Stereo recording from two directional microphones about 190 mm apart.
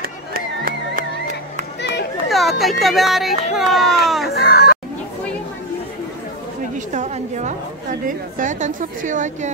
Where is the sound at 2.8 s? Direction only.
Centre (ahead or behind).